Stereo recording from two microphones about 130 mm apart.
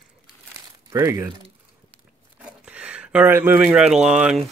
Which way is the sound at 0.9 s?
20° right (ahead or behind).